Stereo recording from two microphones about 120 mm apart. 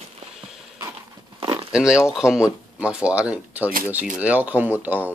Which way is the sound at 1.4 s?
45° right (ahead or behind).